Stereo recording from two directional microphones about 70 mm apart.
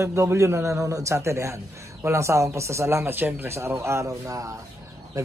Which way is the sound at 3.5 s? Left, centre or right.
Right.